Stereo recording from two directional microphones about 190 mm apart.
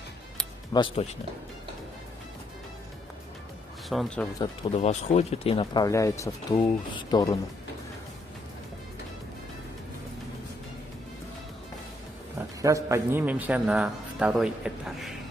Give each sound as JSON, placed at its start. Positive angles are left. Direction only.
{"t": 0.7, "sound": "speech", "side_deg": 25}
{"t": 3.9, "sound": "speech", "side_deg": 0}
{"t": 4.4, "sound": "speech", "side_deg": 30}
{"t": 12.4, "sound": "a man's voice", "side_deg": -15}